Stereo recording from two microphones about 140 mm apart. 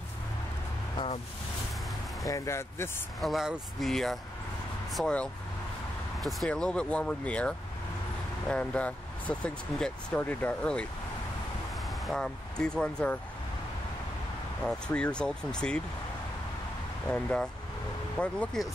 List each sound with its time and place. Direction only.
2.2 s speech: 20° left (ahead or behind)
3.2 s speech: centre (ahead or behind)
14.6 s speech: 5° left (ahead or behind)
17.1 s speech: 10° left (ahead or behind)